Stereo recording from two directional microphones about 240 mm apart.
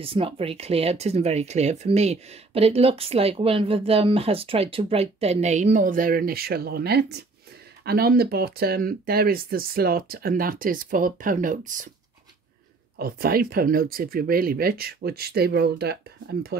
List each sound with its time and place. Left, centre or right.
0.0 s speech: right
12.9 s speech: right